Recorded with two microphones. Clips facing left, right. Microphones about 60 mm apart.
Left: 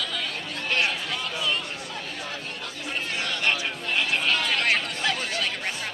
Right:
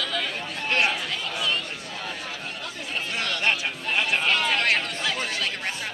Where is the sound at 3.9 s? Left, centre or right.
Right.